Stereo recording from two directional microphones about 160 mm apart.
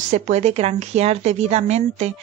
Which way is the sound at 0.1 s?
45° right (ahead or behind).